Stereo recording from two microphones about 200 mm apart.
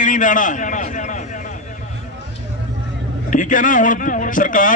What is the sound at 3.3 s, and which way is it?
A man's voice, 40° left (ahead or behind).